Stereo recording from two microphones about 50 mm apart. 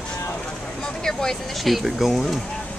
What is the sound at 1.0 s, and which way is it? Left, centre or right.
Vehicle, centre.